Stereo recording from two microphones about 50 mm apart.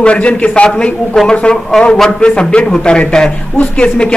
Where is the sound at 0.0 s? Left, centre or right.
Left.